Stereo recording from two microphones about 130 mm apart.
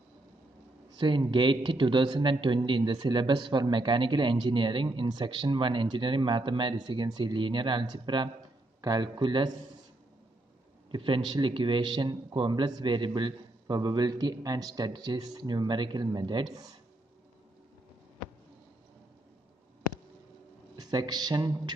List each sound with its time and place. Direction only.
0.9 s a man's voice: 40° right (ahead or behind)
10.9 s a man's voice: 35° right (ahead or behind)
20.7 s speech: 30° right (ahead or behind)